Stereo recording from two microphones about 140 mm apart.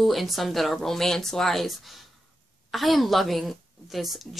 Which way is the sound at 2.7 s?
Centre (ahead or behind).